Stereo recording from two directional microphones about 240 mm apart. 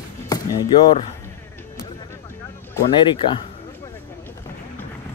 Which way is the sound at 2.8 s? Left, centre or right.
Left.